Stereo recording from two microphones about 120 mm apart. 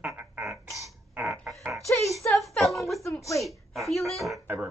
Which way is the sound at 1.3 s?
15° right (ahead or behind).